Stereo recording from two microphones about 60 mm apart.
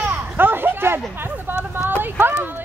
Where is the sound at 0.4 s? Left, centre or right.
Right.